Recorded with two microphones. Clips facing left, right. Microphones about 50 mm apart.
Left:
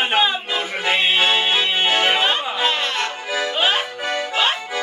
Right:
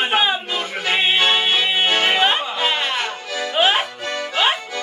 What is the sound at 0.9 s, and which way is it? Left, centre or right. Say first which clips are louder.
Music: even; centre.